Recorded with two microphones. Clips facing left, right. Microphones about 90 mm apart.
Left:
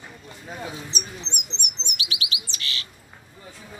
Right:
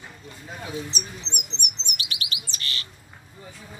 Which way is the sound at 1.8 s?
45° right (ahead or behind).